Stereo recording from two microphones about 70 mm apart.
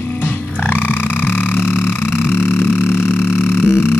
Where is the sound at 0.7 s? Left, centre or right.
Left.